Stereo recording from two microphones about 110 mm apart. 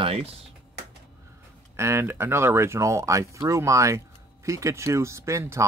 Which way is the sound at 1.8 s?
25° right (ahead or behind).